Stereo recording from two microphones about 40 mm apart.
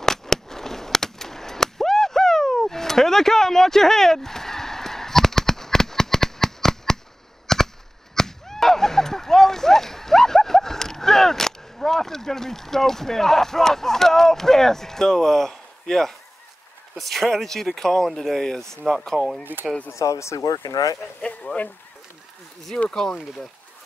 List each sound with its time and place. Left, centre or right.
0.0 s a sound: centre
7.4 s whip: centre
16.9 s speech: centre
19.5 s speech: right
22.7 s speech: left